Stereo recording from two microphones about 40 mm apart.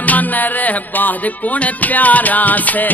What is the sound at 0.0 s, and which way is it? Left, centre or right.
Music, left.